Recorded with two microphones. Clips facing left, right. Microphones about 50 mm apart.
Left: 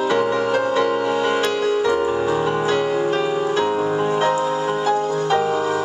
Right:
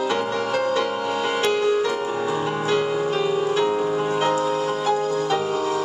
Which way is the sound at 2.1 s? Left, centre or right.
Centre.